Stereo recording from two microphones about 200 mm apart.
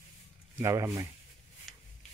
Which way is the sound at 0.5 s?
15° right (ahead or behind).